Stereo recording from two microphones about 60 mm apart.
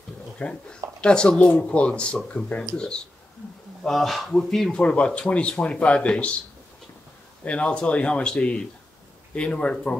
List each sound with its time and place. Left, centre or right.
0.4 s speech: centre
3.8 s speech: centre
4.7 s speech: centre
7.4 s speech: centre